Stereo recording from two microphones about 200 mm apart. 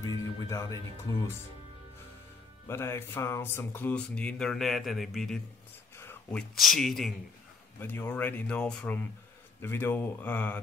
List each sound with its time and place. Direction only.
0.0 s music: 15° left (ahead or behind)
1.1 s speech: 15° left (ahead or behind)
2.7 s speech: 10° left (ahead or behind)
5.9 s a sound: 10° left (ahead or behind)
6.5 s speech: centre (ahead or behind)